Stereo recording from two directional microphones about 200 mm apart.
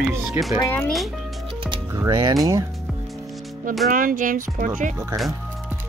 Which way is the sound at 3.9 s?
45° right (ahead or behind).